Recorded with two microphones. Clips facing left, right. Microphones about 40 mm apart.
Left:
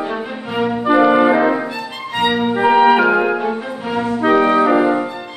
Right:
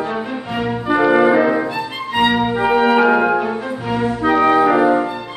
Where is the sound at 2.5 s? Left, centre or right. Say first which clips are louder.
Left 5 dB; centre.